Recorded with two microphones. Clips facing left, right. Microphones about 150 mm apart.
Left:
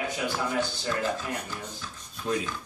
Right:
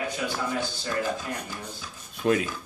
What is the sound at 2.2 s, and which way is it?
Speech, 70° right (ahead or behind).